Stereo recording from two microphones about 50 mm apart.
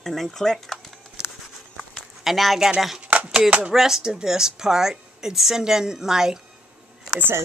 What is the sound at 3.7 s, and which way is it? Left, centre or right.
Speech, centre.